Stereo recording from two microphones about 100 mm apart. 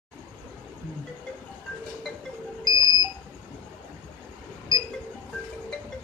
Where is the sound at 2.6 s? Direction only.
40° right (ahead or behind).